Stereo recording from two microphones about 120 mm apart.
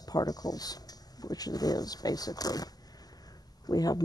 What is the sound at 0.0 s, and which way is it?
Speech, 30° left (ahead or behind).